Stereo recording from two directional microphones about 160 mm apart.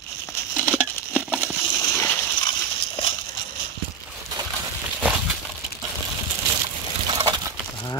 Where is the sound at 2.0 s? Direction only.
30° left (ahead or behind).